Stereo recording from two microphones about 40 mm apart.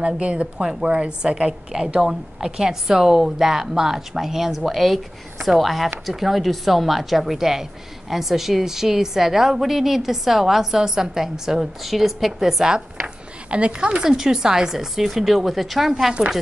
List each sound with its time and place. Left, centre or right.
0.0 s a woman's voice: right
0.6 s a woman's voice: centre
0.8 s a woman's voice: right
12.7 s a sound: right
14.0 s a woman's voice: centre
16.1 s a woman's voice: centre